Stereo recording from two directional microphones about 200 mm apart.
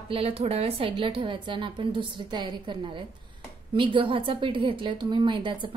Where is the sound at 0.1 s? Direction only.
30° right (ahead or behind).